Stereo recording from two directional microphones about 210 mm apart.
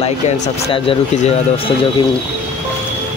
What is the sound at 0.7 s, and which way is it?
Speech, 25° left (ahead or behind).